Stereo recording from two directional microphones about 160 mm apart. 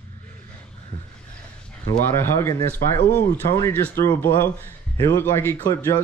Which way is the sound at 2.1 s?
15° left (ahead or behind).